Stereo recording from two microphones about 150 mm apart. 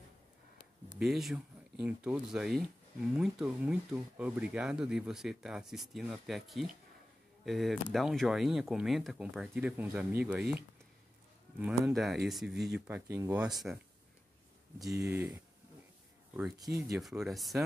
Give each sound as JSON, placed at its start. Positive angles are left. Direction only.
{"t": 0.9, "sound": "speech", "side_deg": 0}
{"t": 11.6, "sound": "speech", "side_deg": 0}
{"t": 12.8, "sound": "speech", "side_deg": -15}
{"t": 14.8, "sound": "speech", "side_deg": 0}
{"t": 15.0, "sound": "speech", "side_deg": -15}
{"t": 16.5, "sound": "speech", "side_deg": -25}
{"t": 16.9, "sound": "speech", "side_deg": 0}